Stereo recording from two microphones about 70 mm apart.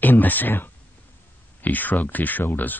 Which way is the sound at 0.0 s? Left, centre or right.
Left.